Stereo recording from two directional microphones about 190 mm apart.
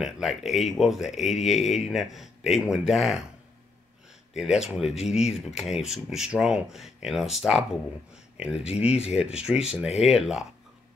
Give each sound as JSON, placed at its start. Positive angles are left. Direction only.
{"t": 0.0, "sound": "speech", "side_deg": 0}
{"t": 4.3, "sound": "speech", "side_deg": -5}
{"t": 8.7, "sound": "speech", "side_deg": 35}
{"t": 9.1, "sound": "speech", "side_deg": -5}